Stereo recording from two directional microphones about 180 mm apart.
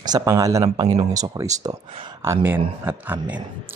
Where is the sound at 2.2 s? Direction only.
15° right (ahead or behind).